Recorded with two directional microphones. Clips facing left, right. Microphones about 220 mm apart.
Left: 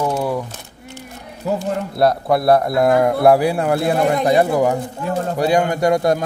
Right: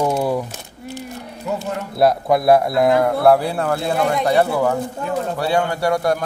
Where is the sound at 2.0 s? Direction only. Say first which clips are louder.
Right 1 dB; centre (ahead or behind).